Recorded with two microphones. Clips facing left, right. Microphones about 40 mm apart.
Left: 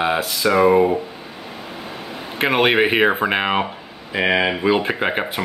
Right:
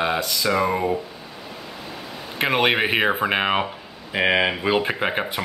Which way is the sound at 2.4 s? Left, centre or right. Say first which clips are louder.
Left 3 dB; centre.